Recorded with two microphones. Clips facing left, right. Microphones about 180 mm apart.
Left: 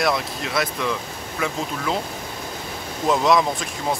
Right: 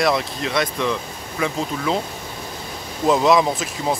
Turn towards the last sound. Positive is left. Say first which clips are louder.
# right 2 dB
turn(degrees=0)  # may be behind; listen again after turning